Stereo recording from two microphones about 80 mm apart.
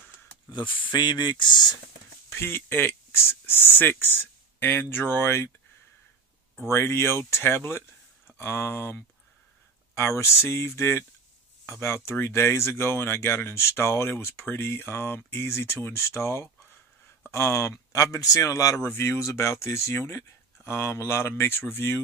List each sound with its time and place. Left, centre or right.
0.7 s speech: left
0.9 s speech: left
2.2 s speech: left
6.7 s speech: left
18.9 s speech: left